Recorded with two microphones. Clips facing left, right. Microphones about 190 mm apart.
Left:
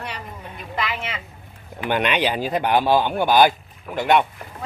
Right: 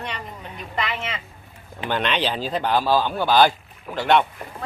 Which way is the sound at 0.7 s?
5° left (ahead or behind).